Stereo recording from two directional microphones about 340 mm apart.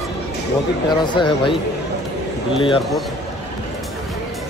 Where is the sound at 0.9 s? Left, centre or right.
Centre.